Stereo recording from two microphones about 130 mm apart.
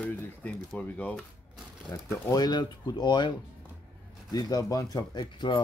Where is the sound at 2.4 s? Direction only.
35° left (ahead or behind).